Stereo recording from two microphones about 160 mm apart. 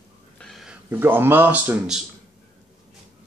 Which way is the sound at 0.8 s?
15° right (ahead or behind).